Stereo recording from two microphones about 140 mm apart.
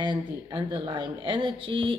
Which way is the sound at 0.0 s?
35° right (ahead or behind).